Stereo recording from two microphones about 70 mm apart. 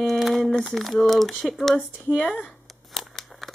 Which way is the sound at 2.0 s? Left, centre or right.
Centre.